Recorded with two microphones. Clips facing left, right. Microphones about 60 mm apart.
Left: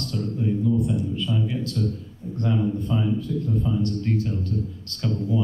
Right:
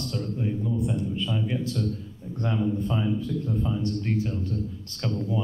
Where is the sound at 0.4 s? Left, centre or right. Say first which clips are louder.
Left 6 dB; centre.